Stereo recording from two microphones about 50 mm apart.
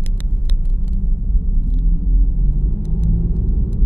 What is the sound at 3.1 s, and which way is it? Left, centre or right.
Vehicle, left.